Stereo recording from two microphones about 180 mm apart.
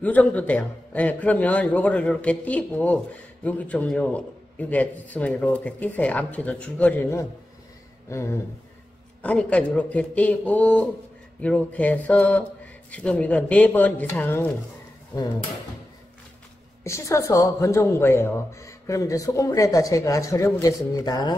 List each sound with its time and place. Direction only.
0.0 s a man's voice: 10° left (ahead or behind)
16.8 s a man's voice: 15° left (ahead or behind)